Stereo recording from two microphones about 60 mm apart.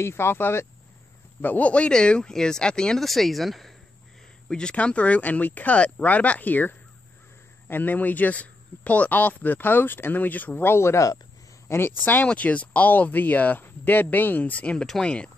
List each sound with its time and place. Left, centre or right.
0.0 s speech: left
1.4 s speech: left; by 3.7 s centre
4.5 s speech: centre; by 11.1 s left
11.7 s speech: left; by 15.3 s centre